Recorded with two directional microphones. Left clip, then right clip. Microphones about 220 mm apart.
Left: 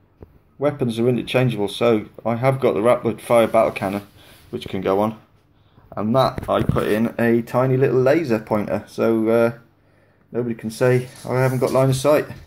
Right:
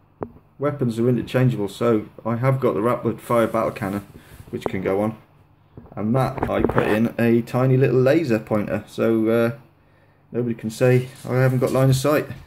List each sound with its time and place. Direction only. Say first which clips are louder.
0.6 s speech: left 2 dB; 15° right (ahead or behind)